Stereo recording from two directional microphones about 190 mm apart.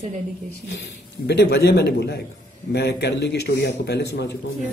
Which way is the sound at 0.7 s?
60° left (ahead or behind).